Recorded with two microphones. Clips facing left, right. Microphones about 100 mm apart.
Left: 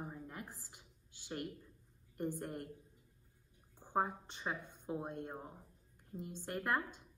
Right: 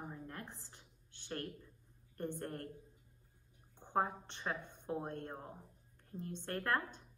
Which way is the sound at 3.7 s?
10° left (ahead or behind).